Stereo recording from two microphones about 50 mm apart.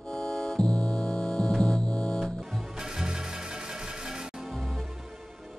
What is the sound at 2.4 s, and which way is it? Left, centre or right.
Music, centre.